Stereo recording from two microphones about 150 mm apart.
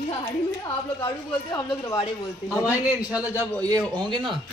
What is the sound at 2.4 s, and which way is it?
Speech, 5° right (ahead or behind).